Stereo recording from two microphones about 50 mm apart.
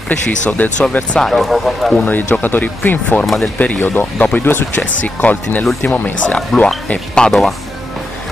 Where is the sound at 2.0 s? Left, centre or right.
Left.